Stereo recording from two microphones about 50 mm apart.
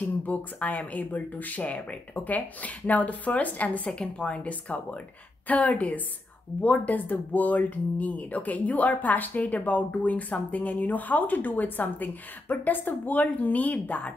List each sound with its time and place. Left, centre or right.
0.0 s speech: left